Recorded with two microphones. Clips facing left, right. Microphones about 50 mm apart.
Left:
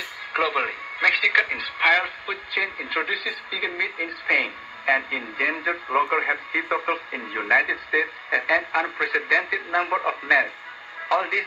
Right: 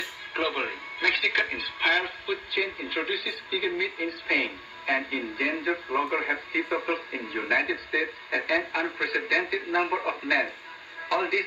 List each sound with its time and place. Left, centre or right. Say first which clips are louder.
0.3 s speech: left 6 dB; left